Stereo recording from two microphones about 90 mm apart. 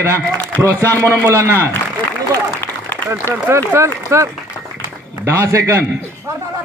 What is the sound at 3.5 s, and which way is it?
A man's voice, 30° right (ahead or behind).